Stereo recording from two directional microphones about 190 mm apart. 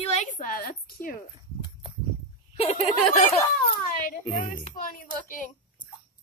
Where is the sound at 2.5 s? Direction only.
30° left (ahead or behind).